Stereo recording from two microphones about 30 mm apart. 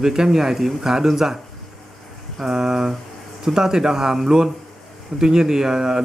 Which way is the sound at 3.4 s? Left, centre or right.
Right.